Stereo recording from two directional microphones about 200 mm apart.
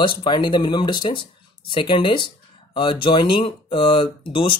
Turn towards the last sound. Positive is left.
turn(degrees=25)  # may be behind; listen again after turning